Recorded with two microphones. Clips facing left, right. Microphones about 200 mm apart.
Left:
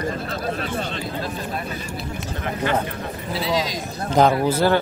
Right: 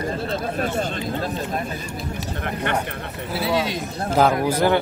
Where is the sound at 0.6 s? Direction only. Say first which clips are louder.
Right 3 dB; 50° right (ahead or behind).